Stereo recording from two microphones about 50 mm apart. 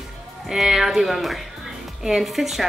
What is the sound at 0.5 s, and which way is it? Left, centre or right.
Speech, centre.